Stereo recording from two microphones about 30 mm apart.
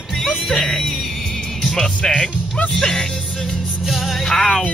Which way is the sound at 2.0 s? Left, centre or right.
Centre.